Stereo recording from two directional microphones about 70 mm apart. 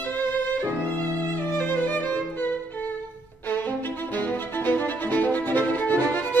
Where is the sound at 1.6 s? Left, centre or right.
Left.